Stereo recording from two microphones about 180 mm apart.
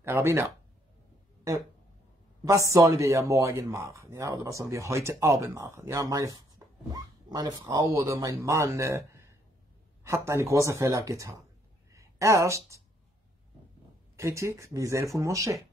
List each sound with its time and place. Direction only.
0.0 s speech: 15° right (ahead or behind)
2.4 s speech: 20° right (ahead or behind)
11.9 s a sound: 15° right (ahead or behind)
14.1 s speech: 15° right (ahead or behind)